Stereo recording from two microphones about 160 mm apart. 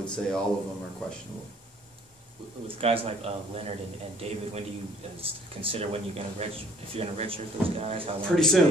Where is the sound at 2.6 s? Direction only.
35° right (ahead or behind).